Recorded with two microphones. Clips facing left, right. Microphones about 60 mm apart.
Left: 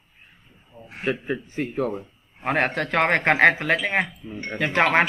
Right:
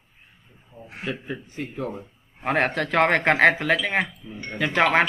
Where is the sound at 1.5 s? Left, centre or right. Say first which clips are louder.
Left 5 dB; left.